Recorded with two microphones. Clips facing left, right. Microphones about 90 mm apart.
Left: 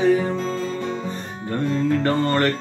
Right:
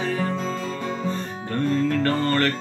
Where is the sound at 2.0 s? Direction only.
20° left (ahead or behind).